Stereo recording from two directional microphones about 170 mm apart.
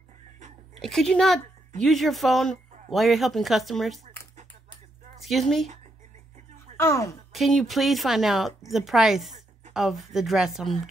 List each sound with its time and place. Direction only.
0.7 s speech: centre (ahead or behind)
5.2 s speech: centre (ahead or behind)
6.8 s speech: 15° left (ahead or behind)
7.3 s speech: centre (ahead or behind)